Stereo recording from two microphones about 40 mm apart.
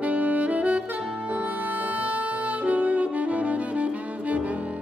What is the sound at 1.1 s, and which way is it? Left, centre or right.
Music, right.